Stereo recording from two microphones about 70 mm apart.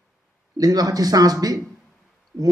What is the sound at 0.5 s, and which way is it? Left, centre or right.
Speech, right.